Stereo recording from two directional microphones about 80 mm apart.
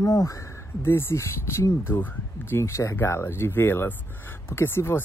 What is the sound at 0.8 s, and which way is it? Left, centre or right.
Speech, left.